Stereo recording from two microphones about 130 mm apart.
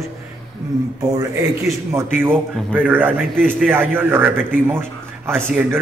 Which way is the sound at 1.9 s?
15° right (ahead or behind).